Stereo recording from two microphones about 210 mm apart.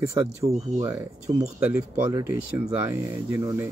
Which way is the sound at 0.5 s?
35° right (ahead or behind).